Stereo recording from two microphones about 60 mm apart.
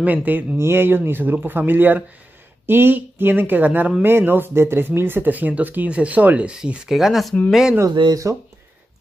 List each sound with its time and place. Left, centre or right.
0.0 s speech: right
0.6 s speech: right; by 7.3 s centre
7.8 s speech: right